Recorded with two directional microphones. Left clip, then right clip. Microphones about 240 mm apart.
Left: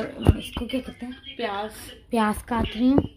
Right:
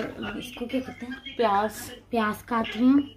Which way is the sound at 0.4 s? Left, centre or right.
Left.